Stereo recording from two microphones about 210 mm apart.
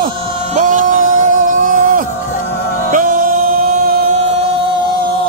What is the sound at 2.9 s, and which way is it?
Music, 40° right (ahead or behind).